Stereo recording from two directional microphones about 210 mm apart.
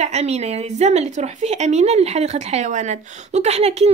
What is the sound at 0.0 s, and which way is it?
A woman's voice, 30° right (ahead or behind).